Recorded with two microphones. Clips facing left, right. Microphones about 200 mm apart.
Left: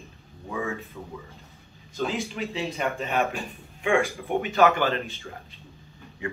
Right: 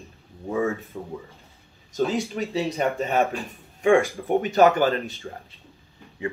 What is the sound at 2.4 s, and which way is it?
Speech, 40° right (ahead or behind).